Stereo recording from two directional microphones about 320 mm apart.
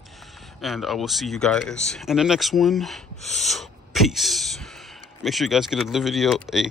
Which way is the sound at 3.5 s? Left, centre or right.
Centre.